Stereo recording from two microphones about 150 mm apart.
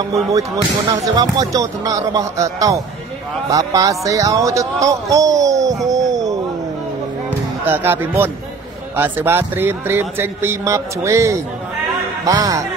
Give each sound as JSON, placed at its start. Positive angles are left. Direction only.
{"t": 0.3, "sound": "speech", "side_deg": -20}
{"t": 5.9, "sound": "a sound", "side_deg": -25}
{"t": 7.6, "sound": "speech", "side_deg": -15}